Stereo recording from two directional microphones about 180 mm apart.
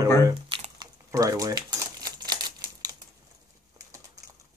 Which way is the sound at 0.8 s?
20° right (ahead or behind).